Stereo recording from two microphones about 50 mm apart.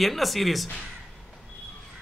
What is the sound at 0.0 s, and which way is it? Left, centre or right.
Speech, centre.